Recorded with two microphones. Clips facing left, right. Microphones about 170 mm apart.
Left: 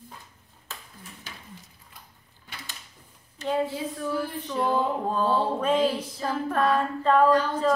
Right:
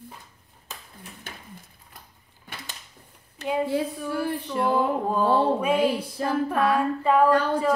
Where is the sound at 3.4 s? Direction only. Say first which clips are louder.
Right 2 dB; 10° right (ahead or behind).